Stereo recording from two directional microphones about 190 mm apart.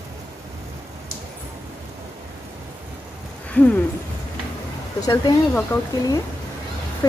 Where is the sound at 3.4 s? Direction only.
10° left (ahead or behind).